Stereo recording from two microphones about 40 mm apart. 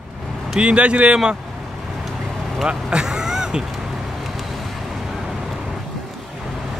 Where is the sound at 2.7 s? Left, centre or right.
Right.